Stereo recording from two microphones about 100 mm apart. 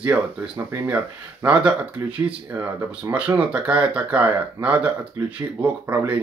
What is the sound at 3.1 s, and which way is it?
Speech, 15° right (ahead or behind).